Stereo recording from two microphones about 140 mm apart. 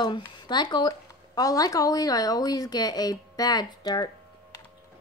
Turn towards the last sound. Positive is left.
turn(degrees=30)  # may be behind; listen again after turning